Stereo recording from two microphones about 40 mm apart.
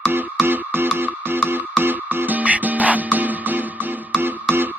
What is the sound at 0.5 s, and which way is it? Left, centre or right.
Music, right.